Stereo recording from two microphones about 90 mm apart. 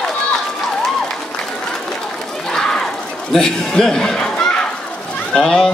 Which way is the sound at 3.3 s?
5° left (ahead or behind).